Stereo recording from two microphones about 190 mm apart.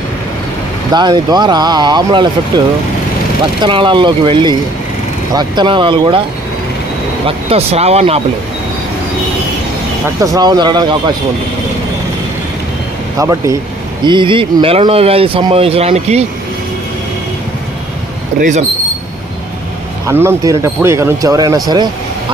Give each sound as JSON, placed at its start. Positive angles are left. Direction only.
{"t": 0.9, "sound": "speech", "side_deg": -20}
{"t": 3.6, "sound": "speech", "side_deg": -25}
{"t": 7.2, "sound": "speech", "side_deg": -30}
{"t": 10.2, "sound": "speech", "side_deg": -20}
{"t": 13.2, "sound": "speech", "side_deg": -15}
{"t": 18.4, "sound": "speech", "side_deg": -40}
{"t": 20.1, "sound": "speech", "side_deg": -15}